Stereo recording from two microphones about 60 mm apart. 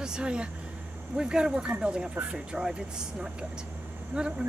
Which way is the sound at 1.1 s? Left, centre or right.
Centre.